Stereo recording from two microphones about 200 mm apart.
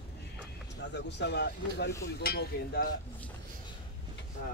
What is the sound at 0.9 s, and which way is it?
Speech, 60° left (ahead or behind).